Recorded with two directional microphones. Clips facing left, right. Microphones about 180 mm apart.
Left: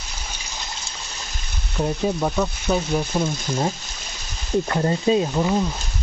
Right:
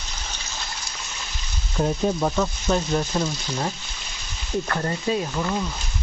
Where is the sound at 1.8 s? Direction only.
Centre (ahead or behind).